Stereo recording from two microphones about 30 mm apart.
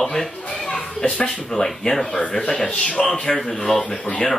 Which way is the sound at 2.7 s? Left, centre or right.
Left.